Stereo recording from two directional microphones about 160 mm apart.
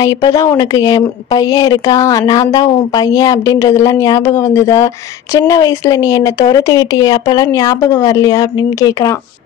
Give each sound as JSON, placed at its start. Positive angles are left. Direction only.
{"t": 0.0, "sound": "speech", "side_deg": 20}